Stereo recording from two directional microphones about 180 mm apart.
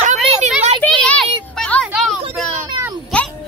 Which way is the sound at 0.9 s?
5° left (ahead or behind).